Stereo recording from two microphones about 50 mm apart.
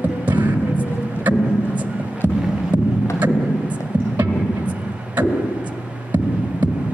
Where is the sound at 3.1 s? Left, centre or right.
Right.